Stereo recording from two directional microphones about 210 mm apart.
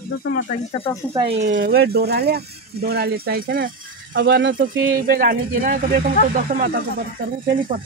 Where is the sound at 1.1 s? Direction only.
25° right (ahead or behind).